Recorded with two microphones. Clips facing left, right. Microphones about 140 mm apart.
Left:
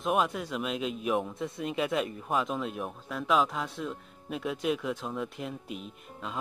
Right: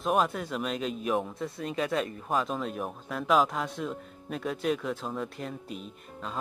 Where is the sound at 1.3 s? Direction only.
20° left (ahead or behind).